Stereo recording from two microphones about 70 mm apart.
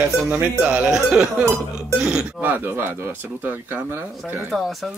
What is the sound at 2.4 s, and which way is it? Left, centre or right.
Speech, right.